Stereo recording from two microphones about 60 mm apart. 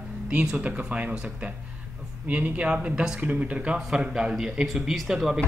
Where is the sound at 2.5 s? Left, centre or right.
Right.